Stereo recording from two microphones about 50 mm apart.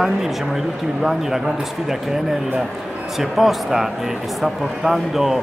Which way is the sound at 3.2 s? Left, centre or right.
Centre.